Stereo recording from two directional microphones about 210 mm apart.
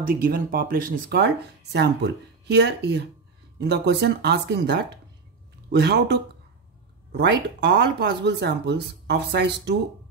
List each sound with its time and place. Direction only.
0.0 s speech: 45° right (ahead or behind)